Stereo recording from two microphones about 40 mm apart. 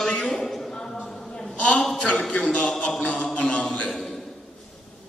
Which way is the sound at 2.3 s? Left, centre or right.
Left.